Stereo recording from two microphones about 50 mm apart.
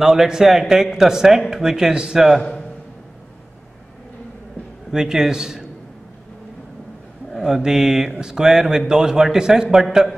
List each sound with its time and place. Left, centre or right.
0.0 s speech: centre
4.9 s speech: centre
7.3 s speech: centre